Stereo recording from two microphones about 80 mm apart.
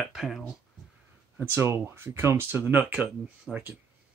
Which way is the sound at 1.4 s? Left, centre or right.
Right.